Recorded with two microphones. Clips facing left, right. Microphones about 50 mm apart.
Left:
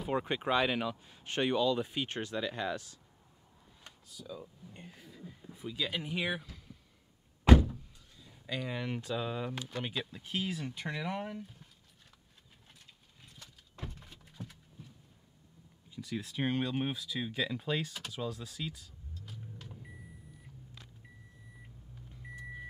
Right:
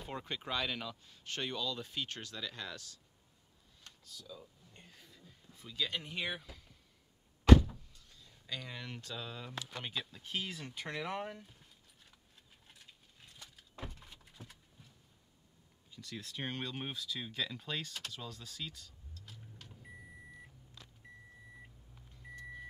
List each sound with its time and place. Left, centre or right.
0.1 s speech: left; by 6.4 s centre
6.4 s a sound: centre
7.5 s door: left
8.2 s speech: centre
9.7 s speech: centre
13.4 s a sound: centre
15.9 s speech: centre
22.1 s vehicle: centre